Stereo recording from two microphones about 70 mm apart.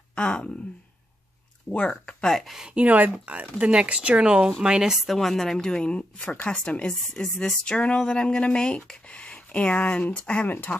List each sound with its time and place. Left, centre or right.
0.1 s speech: centre
1.7 s a woman's voice: centre
2.7 s a woman's voice: right; by 10.5 s centre